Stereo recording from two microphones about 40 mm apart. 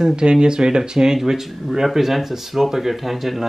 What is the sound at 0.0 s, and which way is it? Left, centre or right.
Speech, right.